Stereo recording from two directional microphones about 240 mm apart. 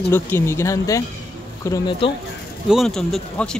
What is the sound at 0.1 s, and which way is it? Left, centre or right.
Speech, centre.